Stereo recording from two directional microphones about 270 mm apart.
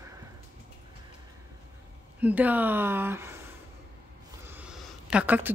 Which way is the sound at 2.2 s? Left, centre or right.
Centre.